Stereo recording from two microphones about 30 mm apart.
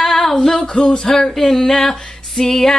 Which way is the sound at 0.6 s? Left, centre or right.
Left.